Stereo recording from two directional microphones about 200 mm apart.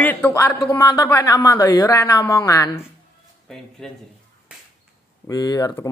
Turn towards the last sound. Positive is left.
turn(degrees=15)  # may be behind; listen again after turning